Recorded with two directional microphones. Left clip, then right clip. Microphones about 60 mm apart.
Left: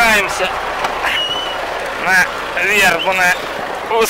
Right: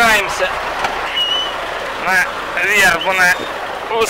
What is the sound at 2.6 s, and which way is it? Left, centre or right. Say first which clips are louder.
Speech: even; centre.